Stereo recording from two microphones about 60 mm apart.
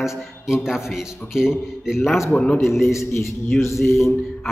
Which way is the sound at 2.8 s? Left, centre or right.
Left.